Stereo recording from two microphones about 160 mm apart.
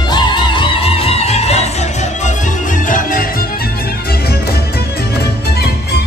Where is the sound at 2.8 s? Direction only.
55° left (ahead or behind).